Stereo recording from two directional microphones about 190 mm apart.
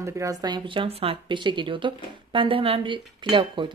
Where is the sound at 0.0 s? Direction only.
15° right (ahead or behind).